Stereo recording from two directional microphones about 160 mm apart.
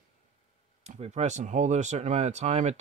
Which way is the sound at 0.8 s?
40° right (ahead or behind).